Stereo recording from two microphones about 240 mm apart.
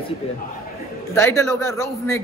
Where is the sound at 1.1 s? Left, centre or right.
Centre.